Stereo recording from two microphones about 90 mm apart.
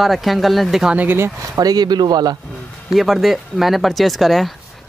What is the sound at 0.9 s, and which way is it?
Speech, 25° right (ahead or behind).